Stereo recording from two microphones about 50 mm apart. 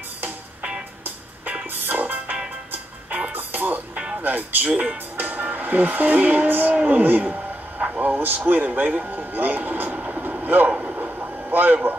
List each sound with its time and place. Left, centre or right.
0.6 s music: centre
1.7 s music: right
3.3 s music: right
3.9 s music: right
4.2 s speech: right
8.2 s speech: right
8.8 s speech: right
9.1 s speech: right
9.9 s vehicle: right